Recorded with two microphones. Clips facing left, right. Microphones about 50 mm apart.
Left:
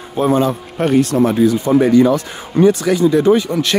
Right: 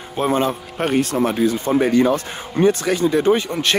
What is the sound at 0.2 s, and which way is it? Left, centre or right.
Speech, right.